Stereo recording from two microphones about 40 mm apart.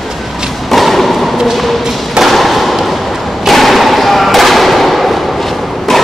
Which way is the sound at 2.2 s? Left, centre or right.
Centre.